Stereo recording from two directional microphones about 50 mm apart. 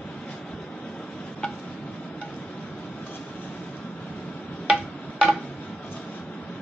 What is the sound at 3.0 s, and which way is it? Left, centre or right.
Train, left.